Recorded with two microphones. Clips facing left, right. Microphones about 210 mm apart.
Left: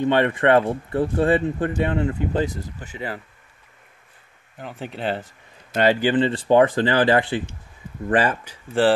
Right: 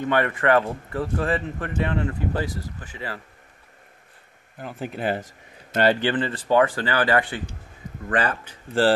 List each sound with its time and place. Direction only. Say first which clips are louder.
0.1 s speech: left 2 dB; 25° left (ahead or behind)
4.6 s speech: right 1 dB; 5° right (ahead or behind)
5.9 s speech: left 2 dB; 10° left (ahead or behind)
6.1 s speech: left 4 dB; 25° left (ahead or behind)